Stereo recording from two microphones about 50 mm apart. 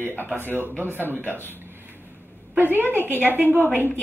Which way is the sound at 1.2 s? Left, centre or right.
Left.